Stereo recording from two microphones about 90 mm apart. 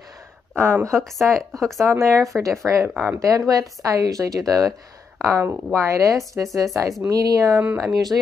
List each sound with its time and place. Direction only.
0.6 s speech: 25° right (ahead or behind)
0.9 s speech: centre (ahead or behind)
1.9 s speech: 35° right (ahead or behind)
3.3 s speech: 40° right (ahead or behind)
5.2 s speech: 30° right (ahead or behind)